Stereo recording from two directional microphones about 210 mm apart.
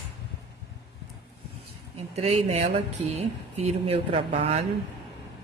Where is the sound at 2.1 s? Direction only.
30° right (ahead or behind).